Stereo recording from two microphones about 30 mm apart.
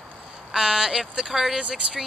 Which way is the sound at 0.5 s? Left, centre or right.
Right.